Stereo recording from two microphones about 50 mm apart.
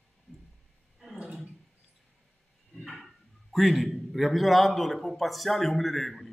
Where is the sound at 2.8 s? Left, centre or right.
Centre.